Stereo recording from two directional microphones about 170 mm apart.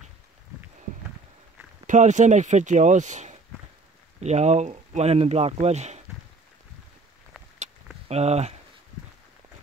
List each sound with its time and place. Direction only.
1.9 s speech: 45° right (ahead or behind)
8.1 s speech: 40° right (ahead or behind)